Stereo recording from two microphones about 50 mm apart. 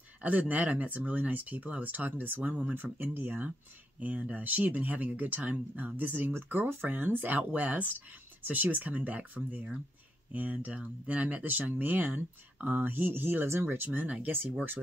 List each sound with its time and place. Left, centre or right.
0.2 s speech: right
13.8 s speech: right